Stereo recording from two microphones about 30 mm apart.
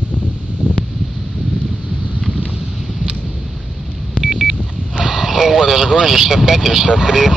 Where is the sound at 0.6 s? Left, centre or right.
Right.